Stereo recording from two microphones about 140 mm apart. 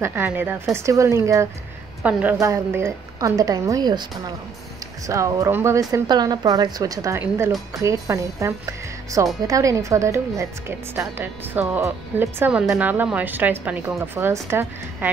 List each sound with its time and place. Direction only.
0.0 s speech: 15° right (ahead or behind)
2.0 s speech: 10° right (ahead or behind); by 4.0 s 25° right (ahead or behind)
5.0 s speech: 25° right (ahead or behind)